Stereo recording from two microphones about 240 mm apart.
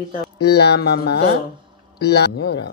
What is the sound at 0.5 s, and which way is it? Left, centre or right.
Speech, left.